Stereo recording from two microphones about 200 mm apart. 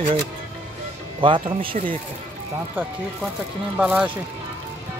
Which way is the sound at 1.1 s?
25° right (ahead or behind).